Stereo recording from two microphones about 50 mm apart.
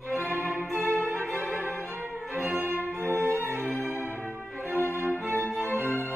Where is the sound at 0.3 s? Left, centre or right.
Right.